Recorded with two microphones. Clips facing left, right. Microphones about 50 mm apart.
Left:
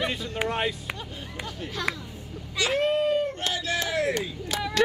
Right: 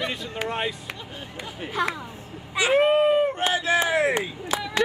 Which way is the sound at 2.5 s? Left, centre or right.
Right.